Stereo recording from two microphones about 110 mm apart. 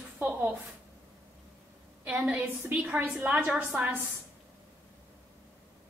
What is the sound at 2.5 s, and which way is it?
A woman's voice, 20° right (ahead or behind).